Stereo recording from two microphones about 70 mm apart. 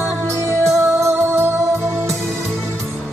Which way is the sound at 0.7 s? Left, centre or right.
Right.